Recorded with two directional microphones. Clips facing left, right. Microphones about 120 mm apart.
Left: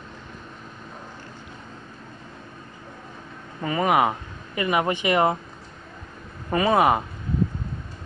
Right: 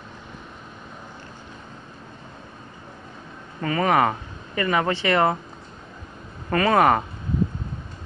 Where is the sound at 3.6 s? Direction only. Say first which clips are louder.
Right 1 dB; 15° left (ahead or behind).